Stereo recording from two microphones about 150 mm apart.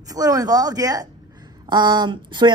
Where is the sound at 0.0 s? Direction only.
25° right (ahead or behind).